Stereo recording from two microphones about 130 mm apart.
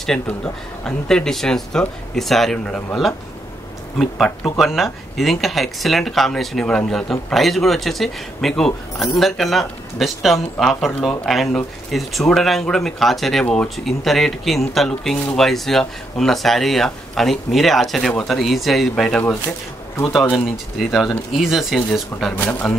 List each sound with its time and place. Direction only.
0.3 s speech: 10° left (ahead or behind)
4.7 s speech: centre (ahead or behind)
22.3 s speech: 10° left (ahead or behind)